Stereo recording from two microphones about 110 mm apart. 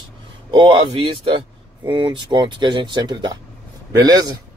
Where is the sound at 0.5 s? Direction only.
50° right (ahead or behind).